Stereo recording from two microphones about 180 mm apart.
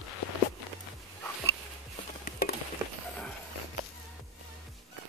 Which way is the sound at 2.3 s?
55° left (ahead or behind).